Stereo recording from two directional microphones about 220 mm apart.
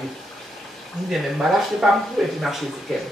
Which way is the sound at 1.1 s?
Centre (ahead or behind).